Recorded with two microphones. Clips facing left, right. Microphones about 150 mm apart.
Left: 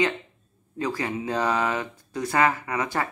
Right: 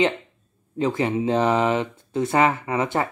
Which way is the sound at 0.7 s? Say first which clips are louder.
Right 6 dB; 25° right (ahead or behind).